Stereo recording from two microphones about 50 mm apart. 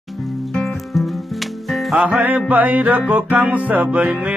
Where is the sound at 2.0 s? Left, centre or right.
Right.